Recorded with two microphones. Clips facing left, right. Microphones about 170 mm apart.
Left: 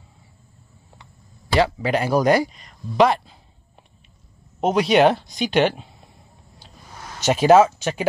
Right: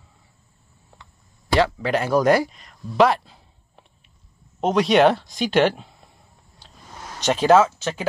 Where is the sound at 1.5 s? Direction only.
Centre (ahead or behind).